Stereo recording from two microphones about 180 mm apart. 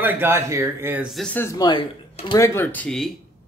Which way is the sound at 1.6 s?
25° left (ahead or behind).